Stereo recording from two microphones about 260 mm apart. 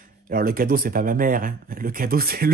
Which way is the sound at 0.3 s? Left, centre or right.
Right.